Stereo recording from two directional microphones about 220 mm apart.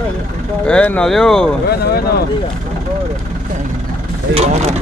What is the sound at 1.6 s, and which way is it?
Speech, 45° left (ahead or behind).